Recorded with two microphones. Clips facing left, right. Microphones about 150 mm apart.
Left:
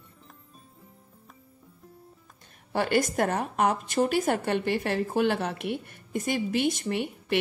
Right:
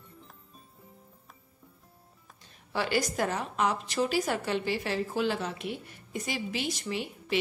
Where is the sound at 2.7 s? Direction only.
50° left (ahead or behind).